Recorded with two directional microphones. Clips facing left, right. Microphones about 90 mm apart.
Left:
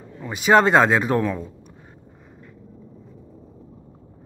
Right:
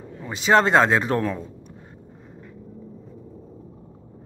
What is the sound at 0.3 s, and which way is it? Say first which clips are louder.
A man's voice: left 2 dB; 10° left (ahead or behind).